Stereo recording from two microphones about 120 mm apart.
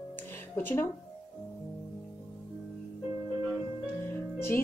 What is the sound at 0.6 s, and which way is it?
Speech, 15° left (ahead or behind).